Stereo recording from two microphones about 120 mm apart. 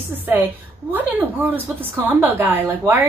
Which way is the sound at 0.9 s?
15° right (ahead or behind).